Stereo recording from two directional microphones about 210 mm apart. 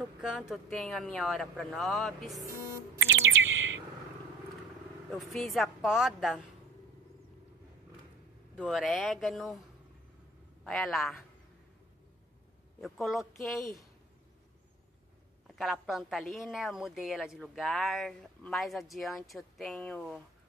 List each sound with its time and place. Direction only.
0.2 s a woman's voice: centre (ahead or behind)
3.0 s bird: 60° right (ahead or behind)
5.1 s a woman's voice: centre (ahead or behind)
8.5 s a woman's voice: centre (ahead or behind)
10.6 s a woman's voice: centre (ahead or behind)
12.8 s a woman's voice: centre (ahead or behind)
15.4 s a woman's voice: centre (ahead or behind)